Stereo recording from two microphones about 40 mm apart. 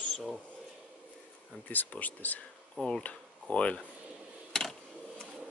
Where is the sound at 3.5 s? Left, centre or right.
Left.